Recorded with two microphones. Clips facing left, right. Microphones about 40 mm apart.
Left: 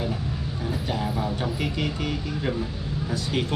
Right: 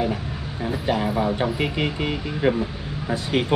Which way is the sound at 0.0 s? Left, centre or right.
Right.